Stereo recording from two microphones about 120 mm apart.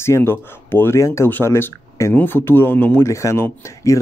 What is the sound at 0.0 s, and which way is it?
Speech, 20° left (ahead or behind).